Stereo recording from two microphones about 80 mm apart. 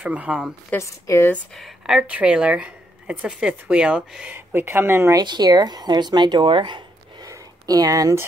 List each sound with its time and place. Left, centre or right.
0.0 s speech: centre
0.7 s a woman's voice: left
1.6 s speech: centre
4.3 s speech: right
5.2 s speech: right
7.2 s a sound: right